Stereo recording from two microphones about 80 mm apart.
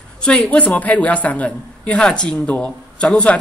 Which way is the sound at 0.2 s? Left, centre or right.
Centre.